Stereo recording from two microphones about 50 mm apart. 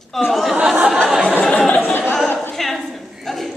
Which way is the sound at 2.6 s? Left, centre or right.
Centre.